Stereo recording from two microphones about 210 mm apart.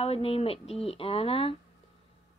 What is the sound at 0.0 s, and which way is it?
Speech, 30° left (ahead or behind).